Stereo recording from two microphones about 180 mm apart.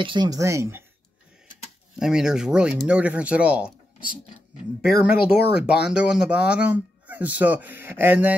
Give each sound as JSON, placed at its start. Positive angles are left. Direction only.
{"t": 0.0, "sound": "speech", "side_deg": -25}
{"t": 2.0, "sound": "speech", "side_deg": -5}
{"t": 5.1, "sound": "speech", "side_deg": 65}
{"t": 5.7, "sound": "speech", "side_deg": -5}